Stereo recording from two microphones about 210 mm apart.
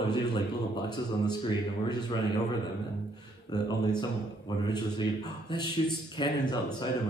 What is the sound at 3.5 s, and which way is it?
Speech, 20° left (ahead or behind).